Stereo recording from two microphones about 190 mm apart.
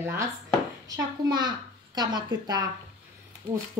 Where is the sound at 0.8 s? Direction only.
20° right (ahead or behind).